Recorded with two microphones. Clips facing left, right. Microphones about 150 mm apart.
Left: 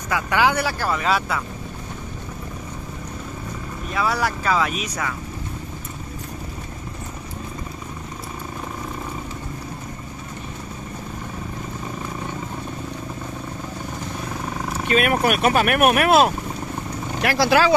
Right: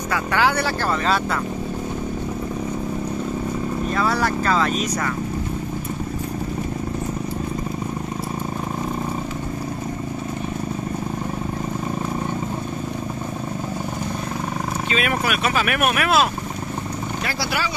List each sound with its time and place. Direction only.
0.1 s speech: 15° left (ahead or behind)
3.9 s speech: 10° left (ahead or behind)
15.0 s speech: 50° left (ahead or behind)
17.2 s speech: 90° left